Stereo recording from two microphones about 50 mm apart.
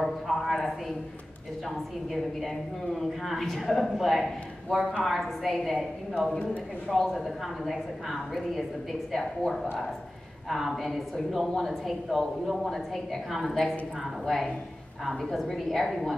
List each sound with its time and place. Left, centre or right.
0.0 s a sound: centre
2.4 s a woman's voice: centre
6.3 s a man's voice: left
6.9 s a woman's voice: centre